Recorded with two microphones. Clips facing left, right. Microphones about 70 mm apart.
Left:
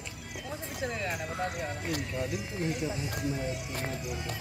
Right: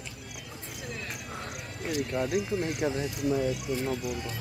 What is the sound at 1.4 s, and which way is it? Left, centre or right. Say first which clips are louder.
Horse: left 2 dB; left.